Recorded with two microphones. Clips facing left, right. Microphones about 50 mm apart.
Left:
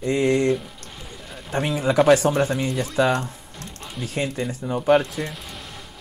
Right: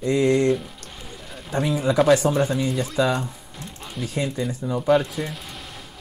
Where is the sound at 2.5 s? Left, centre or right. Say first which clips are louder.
Right 1 dB; left.